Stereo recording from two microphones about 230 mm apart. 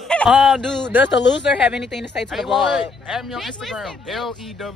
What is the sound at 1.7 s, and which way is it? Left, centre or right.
A man's voice, centre.